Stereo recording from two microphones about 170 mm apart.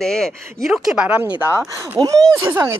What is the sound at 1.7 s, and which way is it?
Speech, 15° right (ahead or behind).